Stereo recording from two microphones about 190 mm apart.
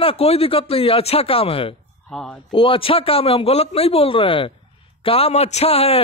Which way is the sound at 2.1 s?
5° left (ahead or behind).